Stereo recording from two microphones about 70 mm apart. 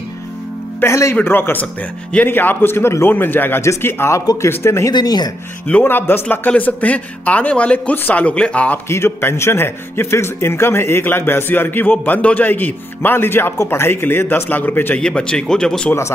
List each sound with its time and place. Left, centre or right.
0.7 s speech: left
1.2 s a man's voice: left
3.6 s a man's voice: left
4.9 s speech: left
5.7 s speech: left
8.8 s a man's voice: left
15.0 s speech: centre